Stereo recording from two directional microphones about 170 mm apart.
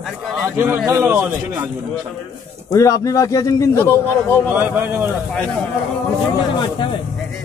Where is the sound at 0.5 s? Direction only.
15° right (ahead or behind).